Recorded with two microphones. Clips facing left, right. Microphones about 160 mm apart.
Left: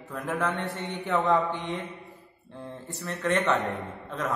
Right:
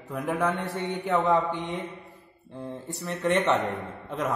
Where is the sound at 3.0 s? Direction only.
20° right (ahead or behind).